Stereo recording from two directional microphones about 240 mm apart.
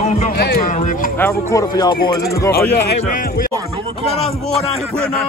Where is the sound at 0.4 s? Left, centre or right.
Left.